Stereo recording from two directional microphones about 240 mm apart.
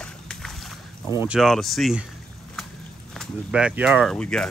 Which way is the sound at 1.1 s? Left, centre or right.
Centre.